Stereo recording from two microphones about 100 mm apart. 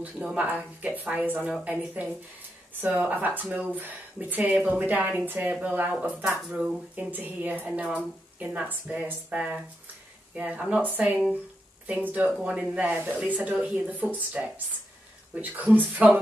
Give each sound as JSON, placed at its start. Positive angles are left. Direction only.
{"t": 0.0, "sound": "speech", "side_deg": -15}
{"t": 15.3, "sound": "speech", "side_deg": -15}